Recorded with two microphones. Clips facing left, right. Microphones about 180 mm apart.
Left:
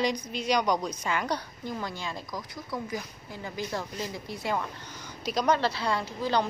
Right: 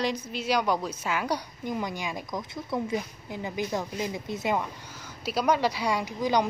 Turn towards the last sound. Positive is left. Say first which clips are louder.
# right 2 dB
turn(degrees=-15)  # may be behind; listen again after turning